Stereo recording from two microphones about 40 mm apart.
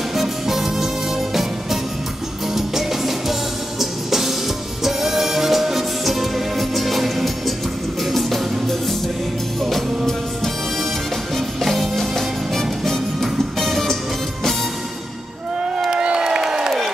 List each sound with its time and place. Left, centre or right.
0.1 s music: centre
15.8 s crowd: right